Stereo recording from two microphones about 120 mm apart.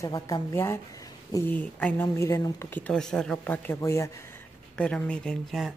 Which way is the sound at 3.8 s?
25° left (ahead or behind).